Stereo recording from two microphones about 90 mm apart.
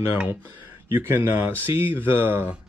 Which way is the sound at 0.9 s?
25° right (ahead or behind).